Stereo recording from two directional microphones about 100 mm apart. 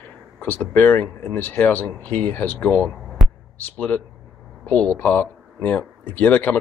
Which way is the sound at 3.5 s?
15° left (ahead or behind).